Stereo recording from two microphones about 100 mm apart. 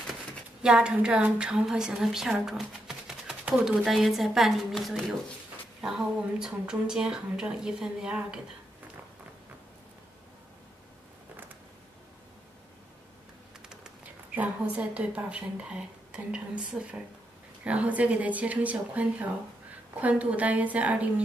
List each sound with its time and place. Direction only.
0.6 s a woman's voice: 10° right (ahead or behind)
13.7 s a woman's voice: 10° right (ahead or behind)